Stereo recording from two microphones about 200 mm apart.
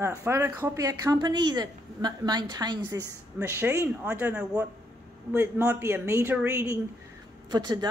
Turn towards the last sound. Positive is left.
turn(degrees=-20)  # may be behind; listen again after turning